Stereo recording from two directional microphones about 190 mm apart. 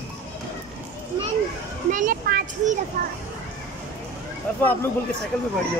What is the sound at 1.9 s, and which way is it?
Speech, 45° right (ahead or behind).